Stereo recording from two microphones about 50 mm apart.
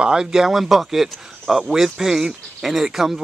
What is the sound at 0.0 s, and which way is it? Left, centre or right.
Speech, centre.